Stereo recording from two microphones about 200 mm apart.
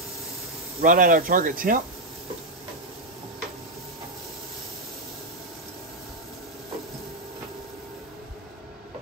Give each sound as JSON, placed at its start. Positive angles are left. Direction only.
{"t": 0.7, "sound": "speech", "side_deg": -45}